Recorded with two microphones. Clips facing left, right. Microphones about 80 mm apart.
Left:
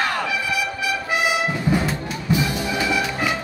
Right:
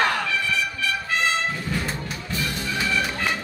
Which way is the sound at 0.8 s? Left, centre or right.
Centre.